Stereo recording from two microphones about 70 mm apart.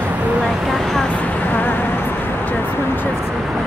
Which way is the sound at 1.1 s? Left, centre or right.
Left.